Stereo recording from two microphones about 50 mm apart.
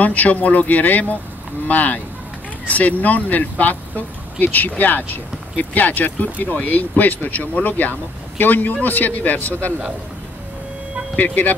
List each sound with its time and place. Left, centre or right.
0.0 s speech: left